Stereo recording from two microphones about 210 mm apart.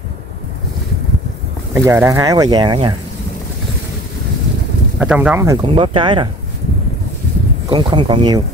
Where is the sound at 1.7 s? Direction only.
15° right (ahead or behind).